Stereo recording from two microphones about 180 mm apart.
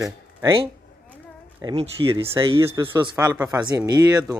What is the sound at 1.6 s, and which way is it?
Speech, 20° right (ahead or behind).